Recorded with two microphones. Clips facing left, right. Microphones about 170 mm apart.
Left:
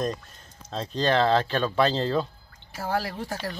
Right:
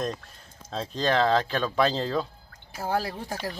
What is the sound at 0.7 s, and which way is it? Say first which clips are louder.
Speech: left 1 dB; 5° right (ahead or behind).